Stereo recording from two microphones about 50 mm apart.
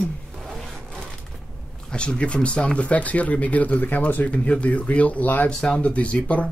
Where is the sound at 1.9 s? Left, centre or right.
Centre.